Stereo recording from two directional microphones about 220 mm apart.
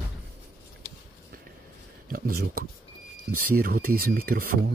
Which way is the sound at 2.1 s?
40° right (ahead or behind).